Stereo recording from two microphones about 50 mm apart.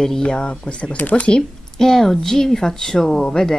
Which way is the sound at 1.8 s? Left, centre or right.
Centre.